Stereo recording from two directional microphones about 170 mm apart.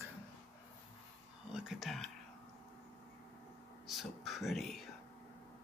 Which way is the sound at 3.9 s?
Centre (ahead or behind).